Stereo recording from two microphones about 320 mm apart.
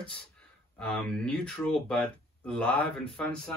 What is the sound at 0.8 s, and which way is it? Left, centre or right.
Speech, centre.